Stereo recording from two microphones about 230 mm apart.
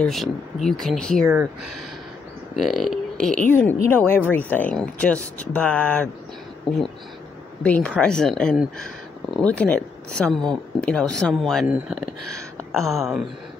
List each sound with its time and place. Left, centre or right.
0.0 s speech: centre
2.5 s speech: centre
7.6 s speech: centre